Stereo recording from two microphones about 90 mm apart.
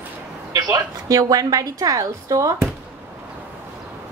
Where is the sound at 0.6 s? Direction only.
40° right (ahead or behind).